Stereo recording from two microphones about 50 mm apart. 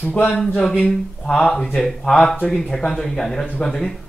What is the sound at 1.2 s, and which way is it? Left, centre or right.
Speech, centre.